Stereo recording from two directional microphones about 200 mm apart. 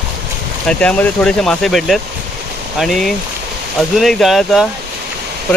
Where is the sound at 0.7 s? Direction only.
5° left (ahead or behind).